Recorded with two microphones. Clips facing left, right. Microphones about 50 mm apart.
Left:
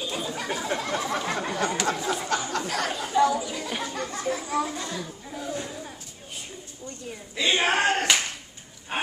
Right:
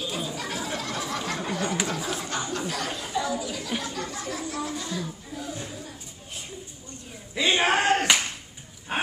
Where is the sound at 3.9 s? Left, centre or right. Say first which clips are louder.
Left 3 dB; left.